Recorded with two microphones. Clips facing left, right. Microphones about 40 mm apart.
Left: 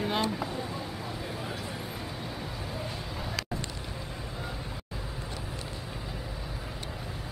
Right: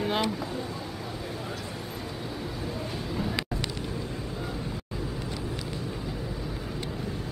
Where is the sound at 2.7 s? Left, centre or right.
Centre.